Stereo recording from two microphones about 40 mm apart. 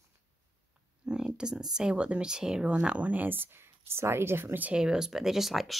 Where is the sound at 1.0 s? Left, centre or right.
Centre.